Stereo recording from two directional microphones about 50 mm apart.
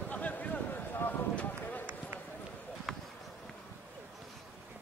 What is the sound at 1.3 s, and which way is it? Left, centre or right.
Run, left.